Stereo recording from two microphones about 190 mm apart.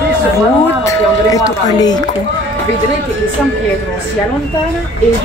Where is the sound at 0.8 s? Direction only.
20° left (ahead or behind).